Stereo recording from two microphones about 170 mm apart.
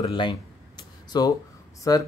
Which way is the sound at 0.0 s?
30° left (ahead or behind).